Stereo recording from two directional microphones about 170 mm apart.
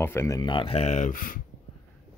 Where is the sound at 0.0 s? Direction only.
15° left (ahead or behind); by 1.4 s 55° left (ahead or behind).